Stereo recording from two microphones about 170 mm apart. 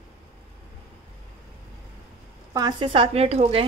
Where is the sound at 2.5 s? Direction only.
25° right (ahead or behind).